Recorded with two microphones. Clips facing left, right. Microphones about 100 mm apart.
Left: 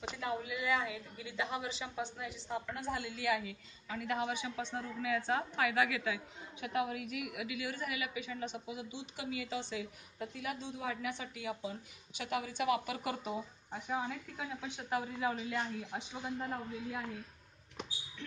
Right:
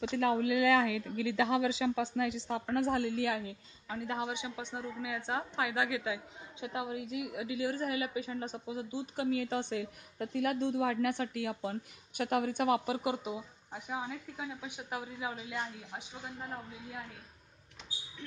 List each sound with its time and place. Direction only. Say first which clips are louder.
0.1 s speech: right 9 dB; 80° right
2.7 s a woman's voice: right 9 dB; 60° right (ahead or behind)
12.2 s a woman's voice: right 6 dB; 50° right (ahead or behind); by 16.4 s 5° right (ahead or behind)